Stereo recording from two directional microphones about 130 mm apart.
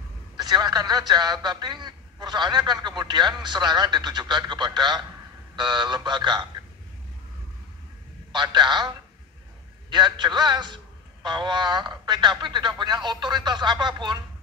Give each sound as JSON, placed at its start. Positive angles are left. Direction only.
{"t": 0.4, "sound": "a man's voice", "side_deg": -30}
{"t": 8.3, "sound": "a man's voice", "side_deg": -35}